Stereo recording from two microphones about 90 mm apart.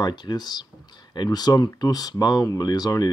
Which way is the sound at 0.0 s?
55° left (ahead or behind).